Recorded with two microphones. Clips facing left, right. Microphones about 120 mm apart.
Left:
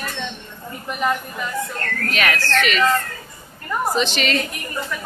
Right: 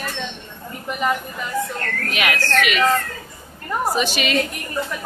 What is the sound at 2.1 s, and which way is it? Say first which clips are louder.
Speech: even; 15° right (ahead or behind).